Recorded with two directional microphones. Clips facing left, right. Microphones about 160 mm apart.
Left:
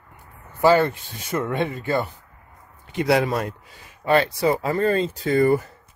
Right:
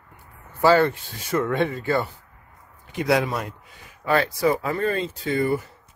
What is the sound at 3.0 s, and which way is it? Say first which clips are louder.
Speech: left 2 dB; 30° left (ahead or behind).